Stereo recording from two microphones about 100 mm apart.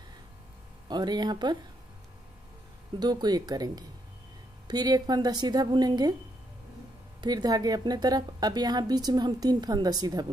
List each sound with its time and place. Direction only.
0.8 s speech: 45° right (ahead or behind)
3.0 s a woman's voice: 45° right (ahead or behind)
7.2 s a woman's voice: 40° right (ahead or behind)